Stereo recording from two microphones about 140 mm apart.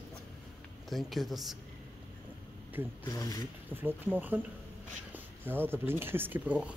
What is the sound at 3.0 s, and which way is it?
Speech, 25° left (ahead or behind).